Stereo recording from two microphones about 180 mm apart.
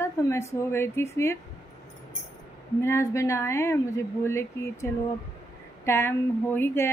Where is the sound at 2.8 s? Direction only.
15° left (ahead or behind).